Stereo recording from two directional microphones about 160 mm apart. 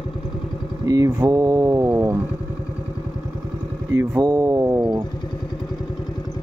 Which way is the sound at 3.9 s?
25° right (ahead or behind).